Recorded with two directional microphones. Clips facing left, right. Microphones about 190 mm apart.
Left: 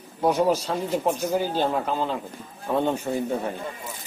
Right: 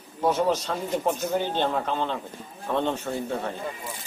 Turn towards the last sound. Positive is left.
turn(degrees=15)  # may be behind; listen again after turning